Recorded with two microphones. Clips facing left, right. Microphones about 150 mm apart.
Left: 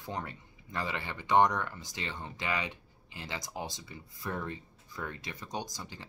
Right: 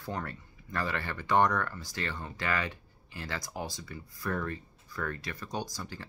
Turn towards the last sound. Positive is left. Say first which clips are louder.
# right 2 dB
turn(degrees=20)  # may be behind; listen again after turning